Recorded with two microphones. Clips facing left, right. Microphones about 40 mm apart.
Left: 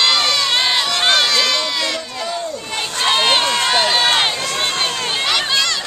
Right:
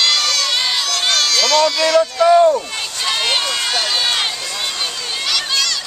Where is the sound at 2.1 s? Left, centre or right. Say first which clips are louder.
Right 13 dB; right.